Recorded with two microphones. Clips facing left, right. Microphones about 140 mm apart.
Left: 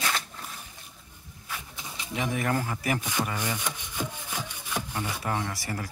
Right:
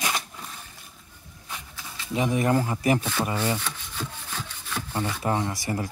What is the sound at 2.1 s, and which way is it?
Speech, 20° right (ahead or behind).